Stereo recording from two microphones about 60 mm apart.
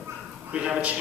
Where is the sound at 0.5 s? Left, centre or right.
Centre.